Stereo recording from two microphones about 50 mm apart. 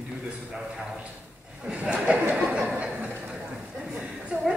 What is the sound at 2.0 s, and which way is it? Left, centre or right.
Chatter, right.